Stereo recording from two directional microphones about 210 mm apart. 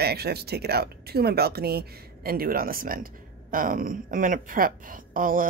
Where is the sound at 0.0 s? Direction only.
50° right (ahead or behind).